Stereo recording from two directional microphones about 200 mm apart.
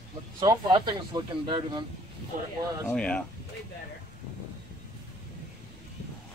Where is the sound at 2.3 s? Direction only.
40° right (ahead or behind).